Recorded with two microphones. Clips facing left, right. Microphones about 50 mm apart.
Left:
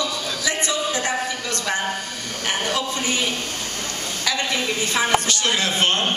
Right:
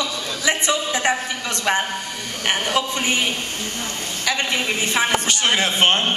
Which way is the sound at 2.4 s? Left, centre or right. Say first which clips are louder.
Right 3 dB; right.